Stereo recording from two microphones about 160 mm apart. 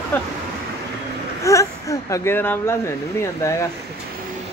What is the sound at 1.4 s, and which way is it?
Speech, 20° left (ahead or behind).